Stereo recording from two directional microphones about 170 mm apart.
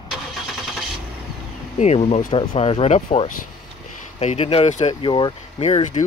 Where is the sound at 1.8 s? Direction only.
35° left (ahead or behind).